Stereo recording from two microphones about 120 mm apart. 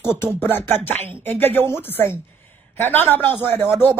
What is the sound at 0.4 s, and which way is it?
A woman's voice, 20° left (ahead or behind).